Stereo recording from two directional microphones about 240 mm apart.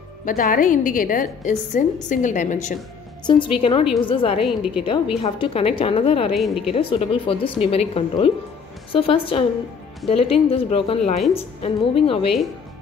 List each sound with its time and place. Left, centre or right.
0.2 s a woman's voice: left
3.3 s speech: left
4.4 s a woman's voice: centre
4.8 s speech: left
6.3 s a woman's voice: centre
6.7 s speech: left